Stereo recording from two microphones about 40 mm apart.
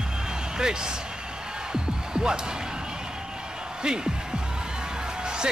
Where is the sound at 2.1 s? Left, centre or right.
Right.